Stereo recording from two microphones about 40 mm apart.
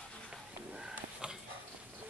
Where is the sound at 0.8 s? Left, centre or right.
Centre.